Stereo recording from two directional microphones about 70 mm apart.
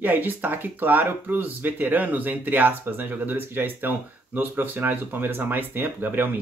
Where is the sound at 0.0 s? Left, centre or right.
Right.